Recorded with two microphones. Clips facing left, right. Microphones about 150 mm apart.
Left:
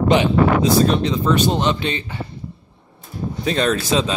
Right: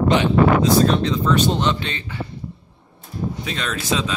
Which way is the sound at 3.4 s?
40° left (ahead or behind).